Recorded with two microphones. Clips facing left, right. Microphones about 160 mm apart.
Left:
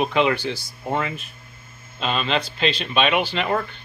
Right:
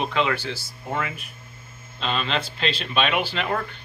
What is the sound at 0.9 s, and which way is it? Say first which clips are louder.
Speech: left 4 dB; 30° left (ahead or behind).